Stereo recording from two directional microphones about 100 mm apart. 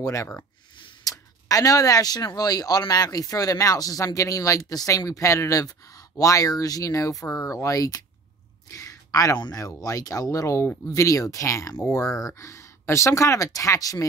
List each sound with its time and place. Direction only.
0.0 s speech: 35° left (ahead or behind)
8.6 s a sound: 35° left (ahead or behind)
9.4 s speech: 40° left (ahead or behind)